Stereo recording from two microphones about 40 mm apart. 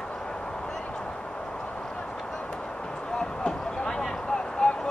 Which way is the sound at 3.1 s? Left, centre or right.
Centre.